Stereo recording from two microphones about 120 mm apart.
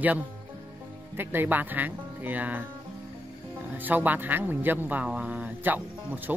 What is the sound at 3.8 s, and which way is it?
Speech, 15° right (ahead or behind).